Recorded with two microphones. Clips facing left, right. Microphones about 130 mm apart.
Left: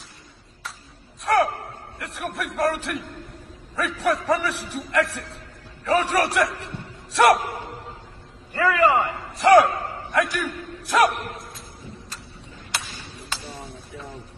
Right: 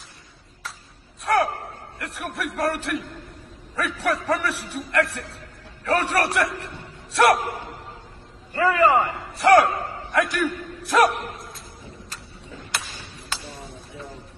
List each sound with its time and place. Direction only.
1.2 s gasp: centre (ahead or behind)
2.0 s a man's voice: centre (ahead or behind)
8.5 s a man's voice: 35° right (ahead or behind)
9.4 s a man's voice: centre (ahead or behind)
11.1 s speech: 65° left (ahead or behind)
12.1 s a sound: centre (ahead or behind)